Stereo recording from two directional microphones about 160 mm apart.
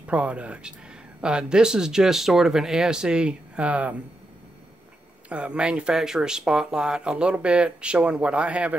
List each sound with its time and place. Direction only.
0.0 s speech: 10° right (ahead or behind)
5.3 s speech: 5° right (ahead or behind)